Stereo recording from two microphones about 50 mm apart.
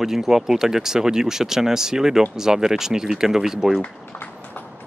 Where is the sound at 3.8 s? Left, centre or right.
Left.